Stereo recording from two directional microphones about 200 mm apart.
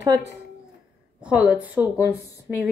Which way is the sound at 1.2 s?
5° right (ahead or behind).